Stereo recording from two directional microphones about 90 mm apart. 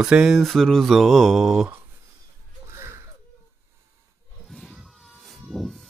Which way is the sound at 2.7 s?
30° right (ahead or behind).